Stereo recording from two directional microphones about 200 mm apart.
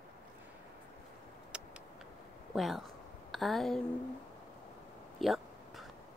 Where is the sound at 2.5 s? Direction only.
Centre (ahead or behind).